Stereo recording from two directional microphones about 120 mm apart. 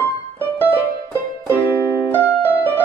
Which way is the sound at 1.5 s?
20° left (ahead or behind).